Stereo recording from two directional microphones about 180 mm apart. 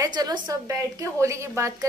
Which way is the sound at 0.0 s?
20° right (ahead or behind).